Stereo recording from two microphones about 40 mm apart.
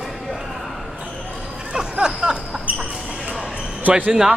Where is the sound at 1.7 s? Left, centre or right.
Centre.